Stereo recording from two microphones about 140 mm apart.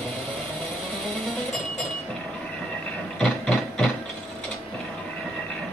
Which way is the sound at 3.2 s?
5° left (ahead or behind).